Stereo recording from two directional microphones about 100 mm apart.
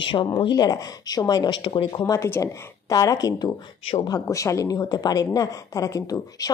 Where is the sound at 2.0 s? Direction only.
35° left (ahead or behind).